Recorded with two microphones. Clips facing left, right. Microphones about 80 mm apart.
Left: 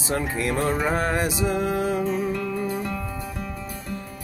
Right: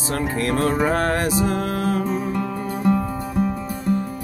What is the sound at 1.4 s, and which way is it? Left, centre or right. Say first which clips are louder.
Music: right 1 dB; right.